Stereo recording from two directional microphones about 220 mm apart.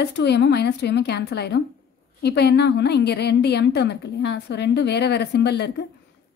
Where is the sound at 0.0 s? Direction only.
50° left (ahead or behind).